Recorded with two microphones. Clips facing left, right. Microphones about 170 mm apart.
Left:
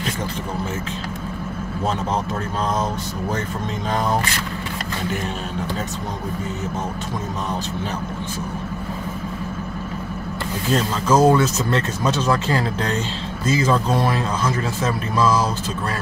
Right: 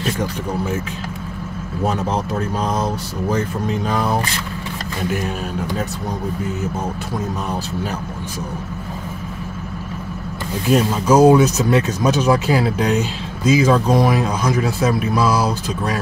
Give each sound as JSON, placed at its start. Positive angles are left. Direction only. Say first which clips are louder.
{"t": 2.8, "sound": "speech", "louder": "right 2 dB", "side_deg": -10}
{"t": 10.7, "sound": "speech", "louder": "right 4 dB", "side_deg": -10}